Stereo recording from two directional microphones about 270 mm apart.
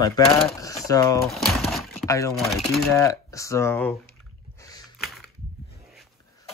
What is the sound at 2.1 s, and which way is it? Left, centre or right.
Speech, centre.